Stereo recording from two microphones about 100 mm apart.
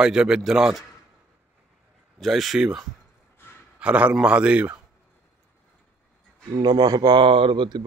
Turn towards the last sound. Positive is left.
turn(degrees=-50)  # may be behind; listen again after turning